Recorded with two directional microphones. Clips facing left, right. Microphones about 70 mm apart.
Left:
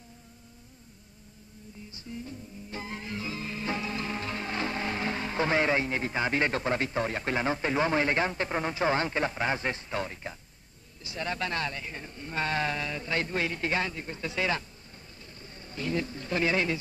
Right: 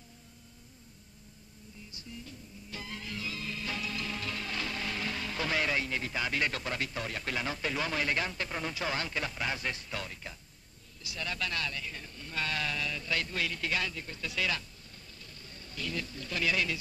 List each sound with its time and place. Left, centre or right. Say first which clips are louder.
1.9 s music: left 7 dB; left
11.1 s a man's voice: left 5 dB; left